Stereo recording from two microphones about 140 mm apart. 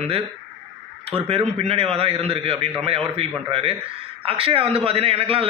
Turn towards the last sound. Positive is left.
turn(degrees=-45)  # may be behind; listen again after turning